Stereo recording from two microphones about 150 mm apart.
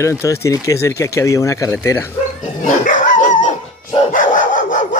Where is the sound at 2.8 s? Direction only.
60° left (ahead or behind).